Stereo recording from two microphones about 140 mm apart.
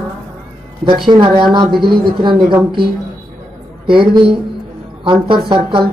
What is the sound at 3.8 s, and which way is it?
Speech, 35° right (ahead or behind).